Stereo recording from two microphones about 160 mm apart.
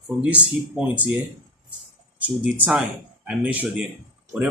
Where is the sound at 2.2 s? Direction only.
10° right (ahead or behind).